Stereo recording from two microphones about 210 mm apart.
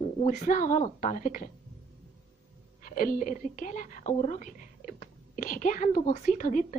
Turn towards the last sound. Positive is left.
turn(degrees=35)  # may be behind; listen again after turning